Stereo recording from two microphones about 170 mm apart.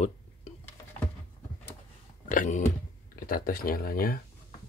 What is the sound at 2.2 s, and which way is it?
Speech, 50° left (ahead or behind).